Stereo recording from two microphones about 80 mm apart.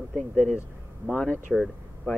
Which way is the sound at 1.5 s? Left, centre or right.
Centre.